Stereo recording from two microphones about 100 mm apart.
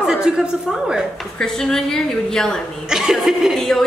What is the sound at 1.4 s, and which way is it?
Speech, 5° left (ahead or behind).